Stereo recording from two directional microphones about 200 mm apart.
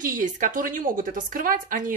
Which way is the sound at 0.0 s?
40° right (ahead or behind).